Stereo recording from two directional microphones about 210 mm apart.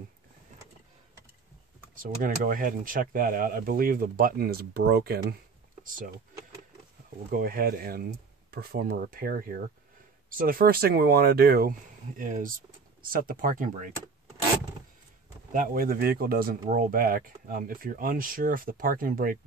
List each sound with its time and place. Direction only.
2.0 s speech: 40° right (ahead or behind)
7.2 s speech: 45° right (ahead or behind)
15.5 s speech: 40° right (ahead or behind)